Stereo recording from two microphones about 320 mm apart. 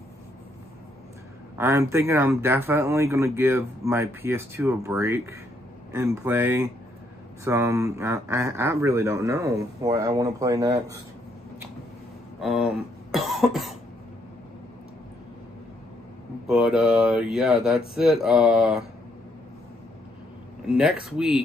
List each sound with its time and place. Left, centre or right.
1.6 s speech: centre
12.4 s speech: centre
16.4 s speech: centre
20.6 s speech: centre